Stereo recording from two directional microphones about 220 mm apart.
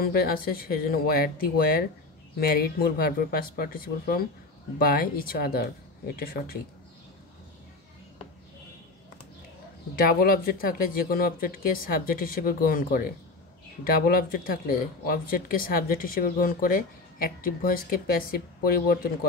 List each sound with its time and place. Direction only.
0.0 s speech: 45° left (ahead or behind)
9.9 s speech: 40° left (ahead or behind)